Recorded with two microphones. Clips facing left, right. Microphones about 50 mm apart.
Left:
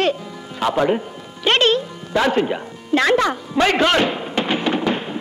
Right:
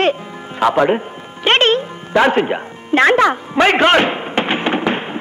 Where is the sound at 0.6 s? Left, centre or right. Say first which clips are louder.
Right 4 dB; right.